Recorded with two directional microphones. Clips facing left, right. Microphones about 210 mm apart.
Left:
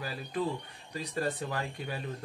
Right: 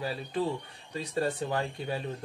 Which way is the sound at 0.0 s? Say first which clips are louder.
Right 2 dB; 25° right (ahead or behind).